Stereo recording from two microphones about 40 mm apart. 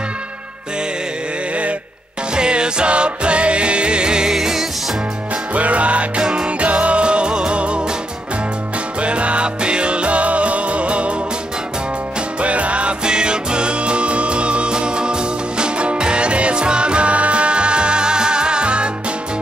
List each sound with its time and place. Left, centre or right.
2.3 s music: right
4.3 s music: centre
5.5 s music: right
9.0 s music: right
12.4 s music: right